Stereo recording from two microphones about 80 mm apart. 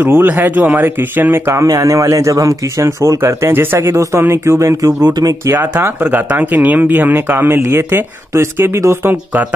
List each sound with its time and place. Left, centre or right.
0.0 s speech: right
1.7 s speech: right
5.5 s speech: right